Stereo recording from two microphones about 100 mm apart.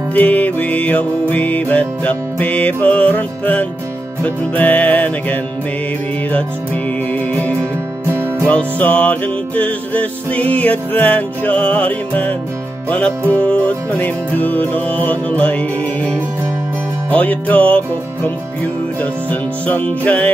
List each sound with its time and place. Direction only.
0.1 s music: 15° left (ahead or behind)
8.5 s music: 15° left (ahead or behind)
19.6 s music: 15° left (ahead or behind)